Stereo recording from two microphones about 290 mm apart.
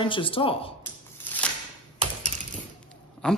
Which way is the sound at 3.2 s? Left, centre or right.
Centre.